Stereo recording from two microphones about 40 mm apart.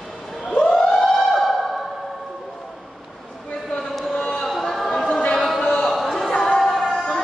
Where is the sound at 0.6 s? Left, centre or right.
Centre.